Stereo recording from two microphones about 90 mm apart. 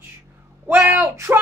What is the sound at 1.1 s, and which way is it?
Speech, 30° right (ahead or behind).